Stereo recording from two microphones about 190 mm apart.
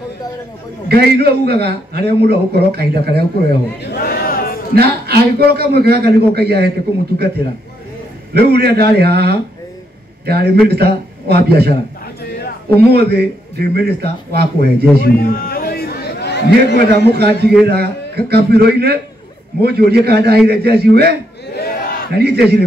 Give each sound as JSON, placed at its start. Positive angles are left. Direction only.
{"t": 0.8, "sound": "a man's voice", "side_deg": -55}
{"t": 3.8, "sound": "a sound", "side_deg": 55}
{"t": 4.7, "sound": "a man's voice", "side_deg": -55}
{"t": 8.3, "sound": "a man's voice", "side_deg": -55}
{"t": 12.7, "sound": "a man's voice", "side_deg": -60}
{"t": 15.0, "sound": "chatter", "side_deg": 50}
{"t": 16.7, "sound": "a man's voice", "side_deg": -60}
{"t": 21.5, "sound": "battle cry", "side_deg": 50}
{"t": 22.1, "sound": "a man's voice", "side_deg": -55}